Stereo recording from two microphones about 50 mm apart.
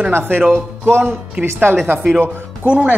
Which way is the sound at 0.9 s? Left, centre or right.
Right.